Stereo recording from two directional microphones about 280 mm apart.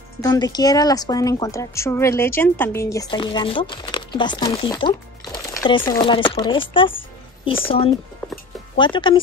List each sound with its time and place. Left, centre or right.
0.2 s a woman's voice: centre
8.7 s a woman's voice: centre